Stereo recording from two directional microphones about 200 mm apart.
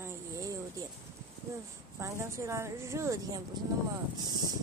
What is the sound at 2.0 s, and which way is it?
A woman's voice, 15° right (ahead or behind).